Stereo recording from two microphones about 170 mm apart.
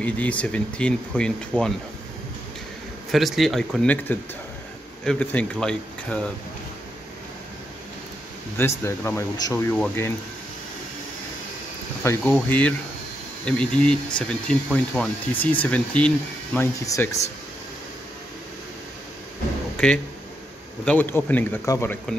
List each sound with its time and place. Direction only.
0.0 s speech: 10° left (ahead or behind)
3.1 s speech: centre (ahead or behind)
8.5 s speech: 15° left (ahead or behind)
12.0 s speech: 10° left (ahead or behind)
20.8 s speech: 10° left (ahead or behind)